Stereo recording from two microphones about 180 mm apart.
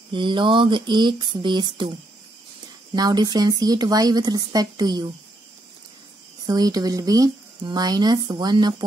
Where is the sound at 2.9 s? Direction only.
20° right (ahead or behind).